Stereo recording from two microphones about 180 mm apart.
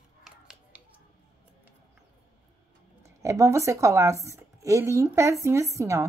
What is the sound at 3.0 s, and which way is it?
Speech, 15° right (ahead or behind).